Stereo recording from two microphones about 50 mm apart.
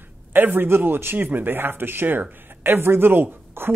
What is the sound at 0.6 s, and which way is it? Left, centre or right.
Speech, right.